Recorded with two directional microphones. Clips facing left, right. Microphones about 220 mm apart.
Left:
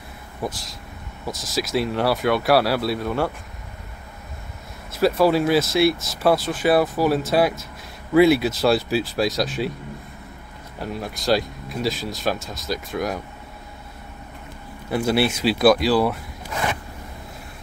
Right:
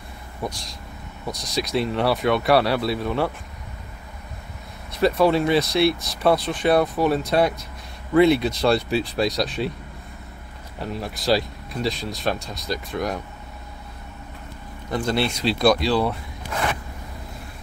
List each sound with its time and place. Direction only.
0.4 s speech: centre (ahead or behind)
4.9 s speech: centre (ahead or behind)
10.8 s speech: centre (ahead or behind)
14.9 s speech: 5° left (ahead or behind)